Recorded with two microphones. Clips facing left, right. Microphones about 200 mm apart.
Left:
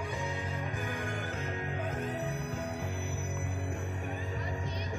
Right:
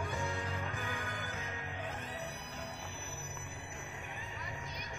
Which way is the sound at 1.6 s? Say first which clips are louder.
Left 8 dB; 50° left (ahead or behind).